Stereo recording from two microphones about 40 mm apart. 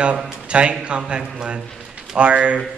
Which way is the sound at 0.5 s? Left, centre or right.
Right.